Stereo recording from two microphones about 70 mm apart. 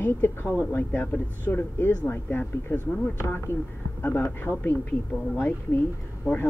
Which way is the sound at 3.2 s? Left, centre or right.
Left.